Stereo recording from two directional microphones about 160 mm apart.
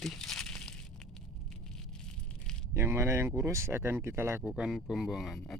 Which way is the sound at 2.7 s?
15° right (ahead or behind).